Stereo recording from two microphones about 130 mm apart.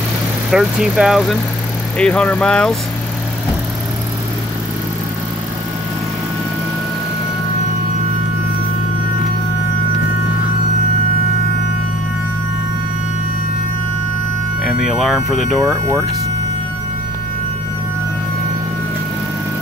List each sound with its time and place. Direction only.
0.5 s speech: 5° right (ahead or behind)
14.6 s speech: centre (ahead or behind)
15.7 s speech: 20° right (ahead or behind)